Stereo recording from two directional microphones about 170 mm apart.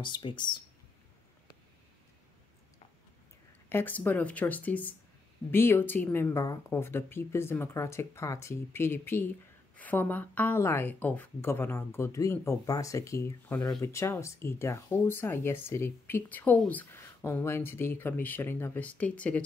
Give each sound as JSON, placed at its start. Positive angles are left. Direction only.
{"t": 0.0, "sound": "speech", "side_deg": 25}
{"t": 3.6, "sound": "speech", "side_deg": 10}